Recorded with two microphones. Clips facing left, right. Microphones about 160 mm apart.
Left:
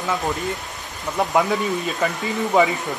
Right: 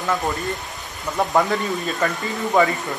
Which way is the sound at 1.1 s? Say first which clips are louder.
Even; 5° left (ahead or behind).